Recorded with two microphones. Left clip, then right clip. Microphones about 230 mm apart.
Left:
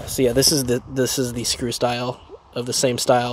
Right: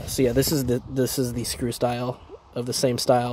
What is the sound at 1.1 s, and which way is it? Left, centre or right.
Speech, left.